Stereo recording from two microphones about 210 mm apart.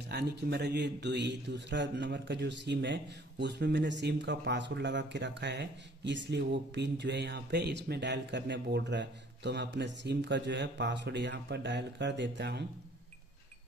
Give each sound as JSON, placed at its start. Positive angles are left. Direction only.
{"t": 0.1, "sound": "a man's voice", "side_deg": -50}